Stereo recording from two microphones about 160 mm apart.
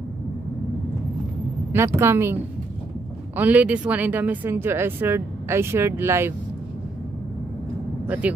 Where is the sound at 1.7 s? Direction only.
15° right (ahead or behind).